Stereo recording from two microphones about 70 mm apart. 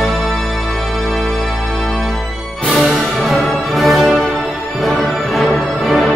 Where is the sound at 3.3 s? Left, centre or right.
Centre.